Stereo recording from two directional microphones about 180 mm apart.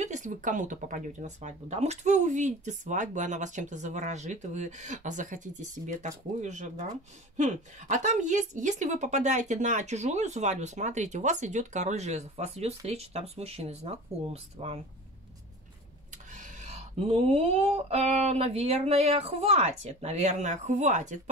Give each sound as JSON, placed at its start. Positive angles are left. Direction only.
{"t": 0.0, "sound": "a woman's voice", "side_deg": -40}
{"t": 16.3, "sound": "a woman's voice", "side_deg": -45}